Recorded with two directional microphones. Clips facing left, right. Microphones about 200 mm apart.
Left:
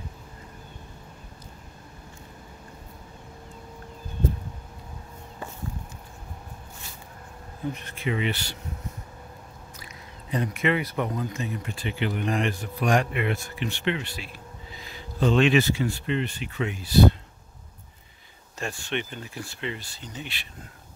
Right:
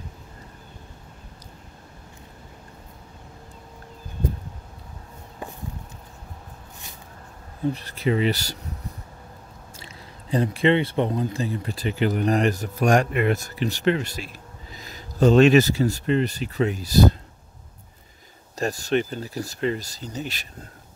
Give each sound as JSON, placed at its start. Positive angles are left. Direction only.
{"t": 7.7, "sound": "speech", "side_deg": -35}
{"t": 10.3, "sound": "speech", "side_deg": -30}
{"t": 18.6, "sound": "speech", "side_deg": -40}